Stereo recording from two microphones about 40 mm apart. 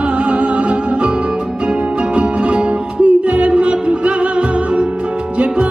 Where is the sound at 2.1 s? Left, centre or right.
Right.